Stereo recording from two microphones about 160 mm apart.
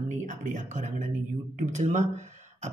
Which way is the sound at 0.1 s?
50° right (ahead or behind).